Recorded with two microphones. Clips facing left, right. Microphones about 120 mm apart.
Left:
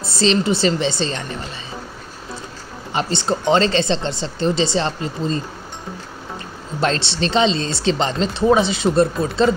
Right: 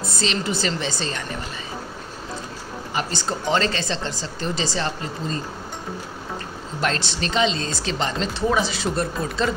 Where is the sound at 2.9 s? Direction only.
25° left (ahead or behind).